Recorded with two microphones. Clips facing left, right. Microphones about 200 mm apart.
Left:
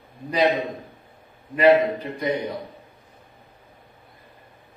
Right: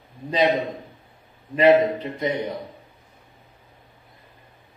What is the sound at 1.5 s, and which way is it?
Speech, 25° right (ahead or behind).